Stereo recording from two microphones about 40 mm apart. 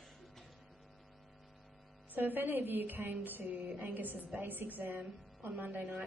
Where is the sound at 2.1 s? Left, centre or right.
Right.